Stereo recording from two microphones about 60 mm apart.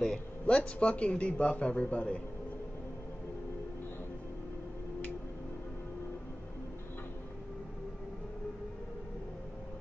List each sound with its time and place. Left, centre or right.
0.0 s speech: centre